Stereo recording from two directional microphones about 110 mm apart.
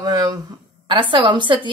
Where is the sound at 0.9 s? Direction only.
50° right (ahead or behind).